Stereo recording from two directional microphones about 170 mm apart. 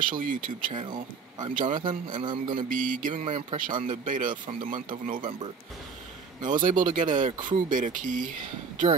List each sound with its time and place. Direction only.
0.0 s speech: 50° right (ahead or behind)
1.6 s a man's voice: 30° right (ahead or behind)
2.5 s speech: 50° right (ahead or behind); by 4.0 s 30° right (ahead or behind)
4.0 s speech: 50° right (ahead or behind)
6.4 s speech: 50° right (ahead or behind)